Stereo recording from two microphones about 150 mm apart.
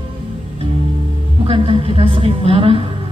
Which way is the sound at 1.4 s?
40° right (ahead or behind).